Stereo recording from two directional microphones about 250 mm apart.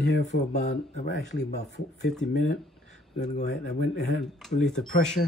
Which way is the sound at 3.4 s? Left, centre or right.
Left.